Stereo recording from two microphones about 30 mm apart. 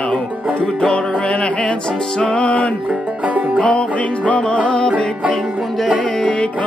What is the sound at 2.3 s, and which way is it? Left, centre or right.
Music, left.